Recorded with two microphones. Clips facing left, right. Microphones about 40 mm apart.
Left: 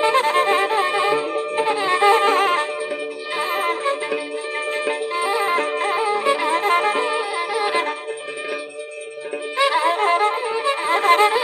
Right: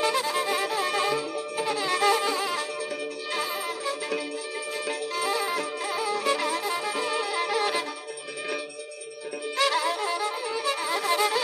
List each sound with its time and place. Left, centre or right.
0.0 s music: left
2.2 s music: left
3.4 s wind instrument: left
4.8 s music: left
6.6 s music: left
7.1 s music: centre
9.6 s music: left